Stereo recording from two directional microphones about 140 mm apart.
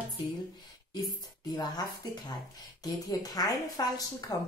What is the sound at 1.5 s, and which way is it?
A woman's voice, 30° left (ahead or behind).